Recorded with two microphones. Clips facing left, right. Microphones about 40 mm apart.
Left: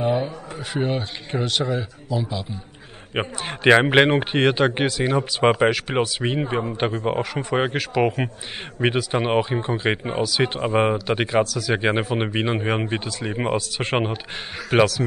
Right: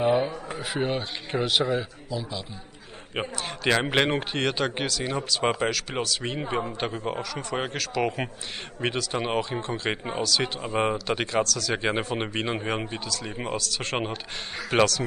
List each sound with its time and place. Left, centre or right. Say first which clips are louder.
0.0 s a man's voice: even; centre
2.0 s a man's voice: left 6 dB; centre
3.2 s speech: left 4 dB; left
10.5 s speech: left 6 dB; left
10.9 s speech: left 5 dB; centre
13.0 s speech: left 6 dB; left
14.7 s speech: left 4 dB; centre